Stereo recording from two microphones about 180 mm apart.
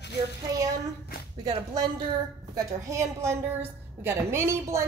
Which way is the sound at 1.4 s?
25° right (ahead or behind).